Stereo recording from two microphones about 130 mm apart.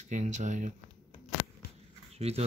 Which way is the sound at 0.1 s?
65° right (ahead or behind).